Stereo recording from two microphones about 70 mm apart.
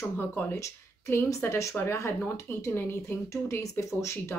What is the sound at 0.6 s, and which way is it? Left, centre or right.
Speech, left.